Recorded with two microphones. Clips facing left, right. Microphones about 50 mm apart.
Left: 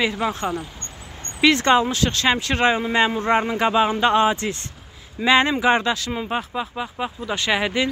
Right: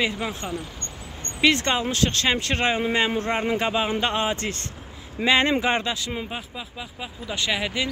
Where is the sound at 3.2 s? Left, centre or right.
Left.